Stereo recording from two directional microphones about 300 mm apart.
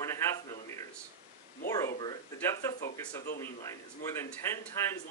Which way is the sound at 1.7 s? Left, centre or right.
Centre.